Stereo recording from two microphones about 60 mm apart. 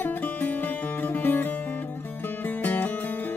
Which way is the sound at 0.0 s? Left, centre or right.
Left.